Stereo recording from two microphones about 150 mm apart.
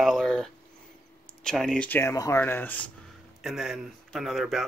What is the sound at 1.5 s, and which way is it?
A man's voice, centre (ahead or behind).